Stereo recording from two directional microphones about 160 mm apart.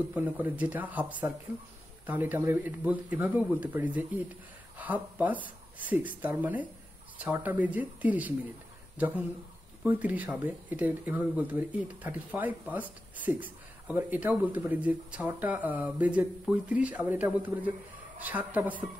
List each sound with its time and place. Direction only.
0.1 s speech: 10° right (ahead or behind)
9.8 s speech: 10° right (ahead or behind)